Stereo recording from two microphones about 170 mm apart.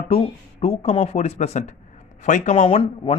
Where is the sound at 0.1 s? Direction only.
35° left (ahead or behind).